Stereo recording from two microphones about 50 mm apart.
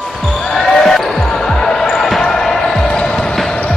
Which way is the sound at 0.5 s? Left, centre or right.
Centre.